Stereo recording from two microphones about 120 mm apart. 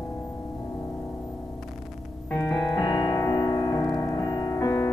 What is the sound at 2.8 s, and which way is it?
Music, 35° left (ahead or behind).